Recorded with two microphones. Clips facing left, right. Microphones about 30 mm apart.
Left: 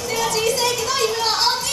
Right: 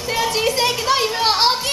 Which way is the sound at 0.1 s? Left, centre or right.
Right.